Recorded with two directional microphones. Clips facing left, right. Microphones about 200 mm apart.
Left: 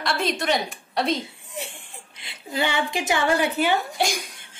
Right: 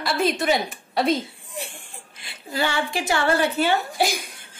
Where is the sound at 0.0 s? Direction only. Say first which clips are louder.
Right 3 dB; 5° right (ahead or behind).